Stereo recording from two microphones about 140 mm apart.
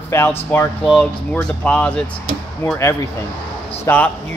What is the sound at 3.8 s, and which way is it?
Speech, 15° left (ahead or behind).